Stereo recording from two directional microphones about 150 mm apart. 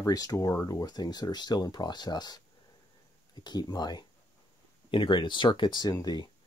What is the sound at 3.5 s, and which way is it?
Speech, 30° left (ahead or behind).